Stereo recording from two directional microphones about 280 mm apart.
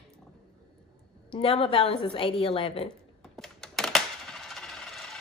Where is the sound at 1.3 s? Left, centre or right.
Left.